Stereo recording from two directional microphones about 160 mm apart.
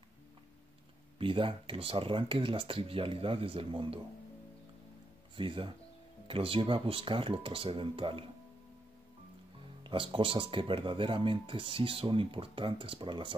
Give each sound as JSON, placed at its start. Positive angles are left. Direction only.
{"t": 1.1, "sound": "speech", "side_deg": -35}
{"t": 5.3, "sound": "speech", "side_deg": -30}
{"t": 9.8, "sound": "speech", "side_deg": -35}